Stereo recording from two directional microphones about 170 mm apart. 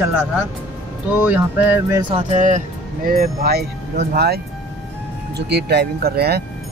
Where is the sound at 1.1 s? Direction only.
10° right (ahead or behind).